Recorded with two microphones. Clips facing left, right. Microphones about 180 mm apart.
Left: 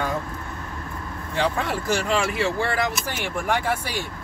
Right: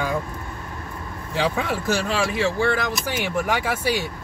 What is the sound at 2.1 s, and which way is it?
Speech, centre (ahead or behind).